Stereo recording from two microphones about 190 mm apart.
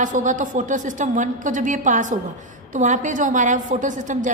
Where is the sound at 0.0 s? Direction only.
40° right (ahead or behind).